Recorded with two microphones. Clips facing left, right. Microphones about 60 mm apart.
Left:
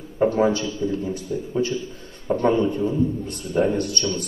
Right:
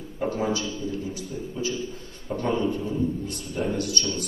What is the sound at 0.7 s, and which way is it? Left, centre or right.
A man's voice, left.